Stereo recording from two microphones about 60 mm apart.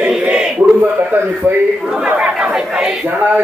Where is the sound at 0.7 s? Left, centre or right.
Right.